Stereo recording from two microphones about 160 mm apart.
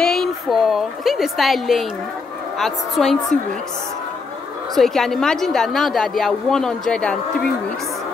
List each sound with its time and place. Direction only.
0.0 s a woman's voice: 5° left (ahead or behind)
4.7 s speech: centre (ahead or behind)